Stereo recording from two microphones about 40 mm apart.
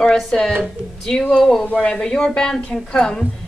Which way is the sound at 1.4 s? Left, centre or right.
Centre.